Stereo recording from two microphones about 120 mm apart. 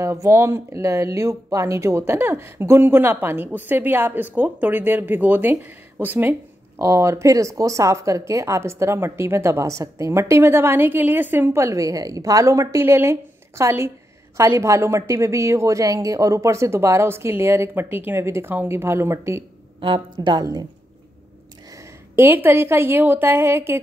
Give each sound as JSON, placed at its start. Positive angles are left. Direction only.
{"t": 0.0, "sound": "speech", "side_deg": -20}
{"t": 19.8, "sound": "a woman's voice", "side_deg": -40}
{"t": 22.1, "sound": "speech", "side_deg": -20}